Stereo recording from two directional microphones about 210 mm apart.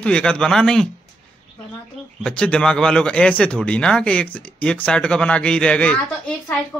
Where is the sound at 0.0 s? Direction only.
5° left (ahead or behind).